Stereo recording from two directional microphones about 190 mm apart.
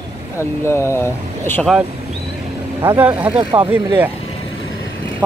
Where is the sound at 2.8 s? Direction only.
10° right (ahead or behind).